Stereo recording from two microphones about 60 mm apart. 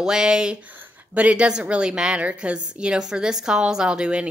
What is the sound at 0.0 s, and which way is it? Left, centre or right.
A woman's voice, centre.